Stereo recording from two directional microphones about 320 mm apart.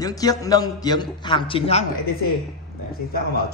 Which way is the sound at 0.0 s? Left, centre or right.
Centre.